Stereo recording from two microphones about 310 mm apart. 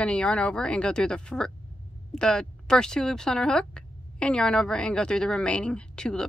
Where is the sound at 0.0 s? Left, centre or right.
Centre.